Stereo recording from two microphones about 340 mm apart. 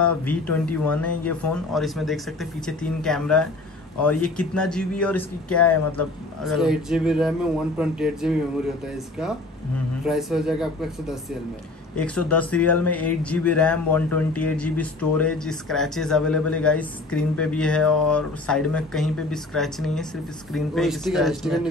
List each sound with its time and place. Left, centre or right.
0.0 s speech: centre
10.0 s speech: centre